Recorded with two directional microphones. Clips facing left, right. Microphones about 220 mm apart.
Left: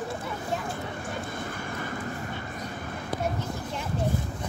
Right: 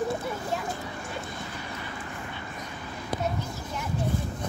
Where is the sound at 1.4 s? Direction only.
50° left (ahead or behind).